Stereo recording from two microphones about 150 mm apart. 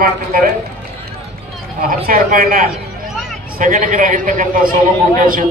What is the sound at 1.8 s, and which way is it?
A man's voice, 70° right (ahead or behind).